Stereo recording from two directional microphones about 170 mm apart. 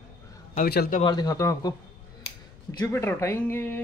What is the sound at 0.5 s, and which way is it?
Speech, 60° left (ahead or behind).